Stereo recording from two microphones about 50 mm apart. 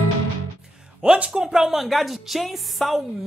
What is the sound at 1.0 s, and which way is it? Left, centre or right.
Speech, right.